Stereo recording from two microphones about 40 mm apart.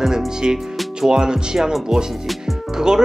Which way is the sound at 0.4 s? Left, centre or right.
Right.